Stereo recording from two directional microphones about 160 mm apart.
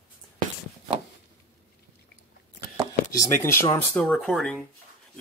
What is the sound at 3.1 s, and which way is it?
Speech, 20° left (ahead or behind).